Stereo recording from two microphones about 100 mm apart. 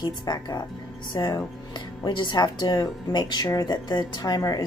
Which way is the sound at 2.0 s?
50° left (ahead or behind).